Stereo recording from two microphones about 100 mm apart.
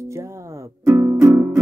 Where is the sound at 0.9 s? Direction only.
25° right (ahead or behind).